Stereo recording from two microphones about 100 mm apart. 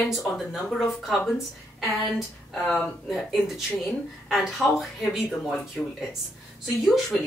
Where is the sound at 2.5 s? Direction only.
5° left (ahead or behind).